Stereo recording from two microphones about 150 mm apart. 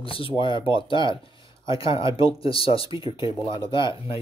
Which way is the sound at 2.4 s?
40° left (ahead or behind).